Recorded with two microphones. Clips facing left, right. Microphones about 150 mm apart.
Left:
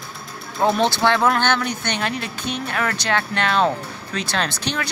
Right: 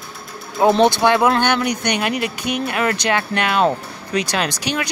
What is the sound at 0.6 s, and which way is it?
Speech, 20° right (ahead or behind).